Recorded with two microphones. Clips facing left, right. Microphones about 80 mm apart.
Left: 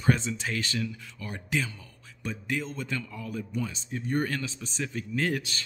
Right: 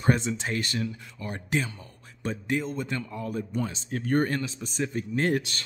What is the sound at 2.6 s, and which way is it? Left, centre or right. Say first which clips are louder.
Speech: right 3 dB; right.